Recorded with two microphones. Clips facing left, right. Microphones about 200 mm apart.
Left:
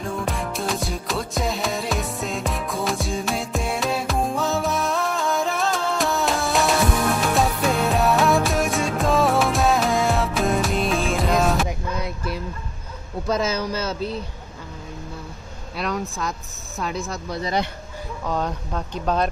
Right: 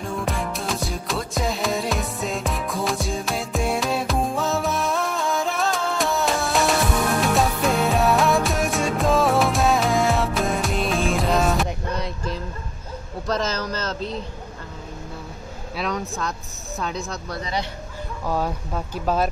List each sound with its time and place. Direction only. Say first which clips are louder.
0.0 s music: even; centre (ahead or behind)
13.3 s speech: left 2 dB; 10° left (ahead or behind)
15.7 s speech: even; centre (ahead or behind)
17.4 s speech: left 4 dB; 45° left (ahead or behind)
18.2 s speech: right 1 dB; 10° right (ahead or behind)